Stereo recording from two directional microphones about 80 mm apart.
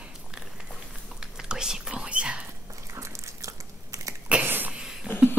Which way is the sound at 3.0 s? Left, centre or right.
Right.